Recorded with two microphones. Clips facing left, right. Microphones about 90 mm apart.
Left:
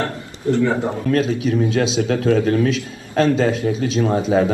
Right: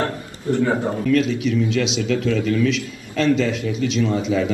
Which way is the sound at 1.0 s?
35° left (ahead or behind).